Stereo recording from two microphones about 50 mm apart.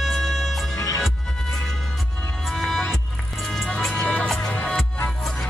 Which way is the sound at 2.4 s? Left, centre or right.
Centre.